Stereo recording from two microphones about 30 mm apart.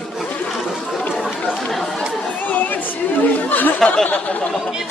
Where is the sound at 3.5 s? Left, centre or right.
Left.